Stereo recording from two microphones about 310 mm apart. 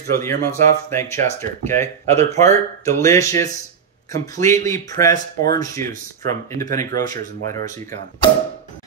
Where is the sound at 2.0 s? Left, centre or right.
Right.